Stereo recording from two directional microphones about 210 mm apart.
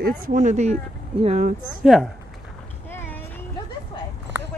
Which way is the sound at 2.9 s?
10° left (ahead or behind).